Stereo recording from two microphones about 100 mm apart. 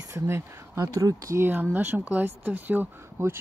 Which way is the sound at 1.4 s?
20° right (ahead or behind).